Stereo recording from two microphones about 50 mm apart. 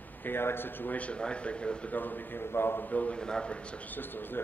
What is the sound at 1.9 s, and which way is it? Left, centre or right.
Speech, left.